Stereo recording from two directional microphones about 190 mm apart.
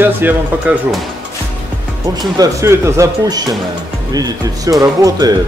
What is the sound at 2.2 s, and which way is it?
Speech, 20° right (ahead or behind).